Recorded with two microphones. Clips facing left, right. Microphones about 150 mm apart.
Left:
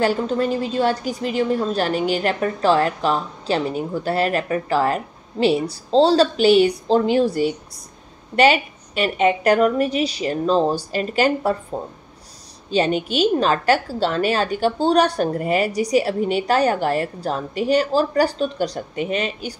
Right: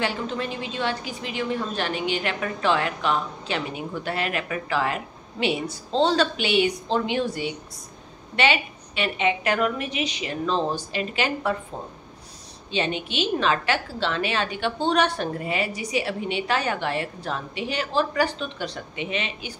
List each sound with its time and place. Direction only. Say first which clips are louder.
0.0 s a woman's voice: left 8 dB; 40° left (ahead or behind)
12.7 s a woman's voice: left 7 dB; 40° left (ahead or behind)